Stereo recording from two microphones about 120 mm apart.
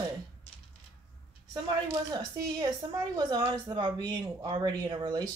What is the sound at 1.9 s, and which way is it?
Speech, 30° right (ahead or behind).